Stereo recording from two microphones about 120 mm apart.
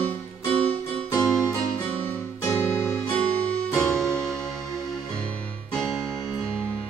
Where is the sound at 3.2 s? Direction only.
10° left (ahead or behind).